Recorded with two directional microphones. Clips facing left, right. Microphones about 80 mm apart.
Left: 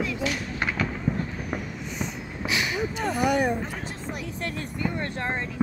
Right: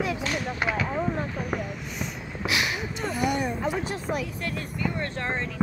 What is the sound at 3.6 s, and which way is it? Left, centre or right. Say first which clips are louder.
Music: right 5 dB; right.